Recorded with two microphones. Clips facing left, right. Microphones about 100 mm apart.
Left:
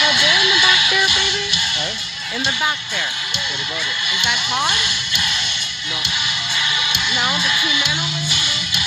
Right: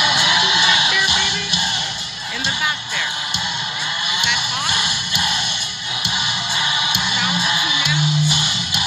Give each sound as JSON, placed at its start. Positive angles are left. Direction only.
{"t": 0.0, "sound": "music", "side_deg": -20}
{"t": 4.7, "sound": "a sound", "side_deg": -15}
{"t": 7.5, "sound": "music", "side_deg": -30}